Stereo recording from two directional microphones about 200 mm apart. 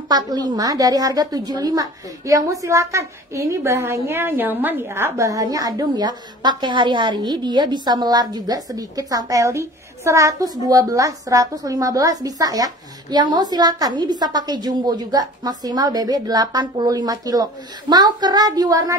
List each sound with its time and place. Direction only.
0.1 s a woman's voice: 20° right (ahead or behind)